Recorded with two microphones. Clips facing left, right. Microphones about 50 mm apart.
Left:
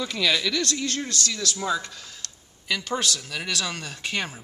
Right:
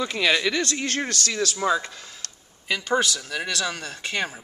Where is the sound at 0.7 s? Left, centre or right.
Right.